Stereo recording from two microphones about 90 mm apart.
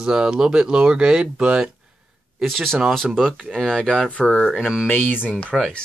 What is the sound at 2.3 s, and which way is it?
Speech, centre (ahead or behind).